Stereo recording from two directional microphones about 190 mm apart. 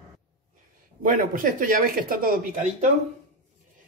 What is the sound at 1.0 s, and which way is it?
Speech, 45° right (ahead or behind).